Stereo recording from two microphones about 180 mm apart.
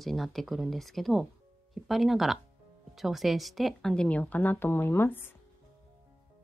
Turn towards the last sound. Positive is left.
turn(degrees=10)  # may be behind; listen again after turning